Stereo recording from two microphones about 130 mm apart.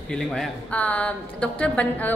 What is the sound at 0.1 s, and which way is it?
Speech, 5° left (ahead or behind).